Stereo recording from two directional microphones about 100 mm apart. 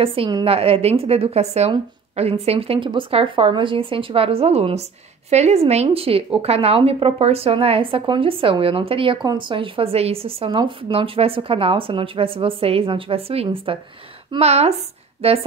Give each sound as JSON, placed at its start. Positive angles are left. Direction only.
{"t": 0.0, "sound": "a woman's voice", "side_deg": -65}
{"t": 0.5, "sound": "a woman's voice", "side_deg": -75}
{"t": 14.4, "sound": "a woman's voice", "side_deg": -90}